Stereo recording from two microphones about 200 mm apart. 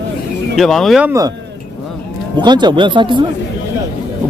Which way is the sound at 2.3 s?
20° right (ahead or behind).